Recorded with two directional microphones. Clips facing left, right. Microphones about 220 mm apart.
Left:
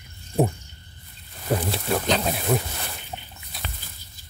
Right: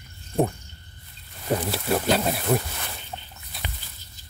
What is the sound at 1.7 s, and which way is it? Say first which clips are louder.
Speech: right 1 dB; 5° right (ahead or behind).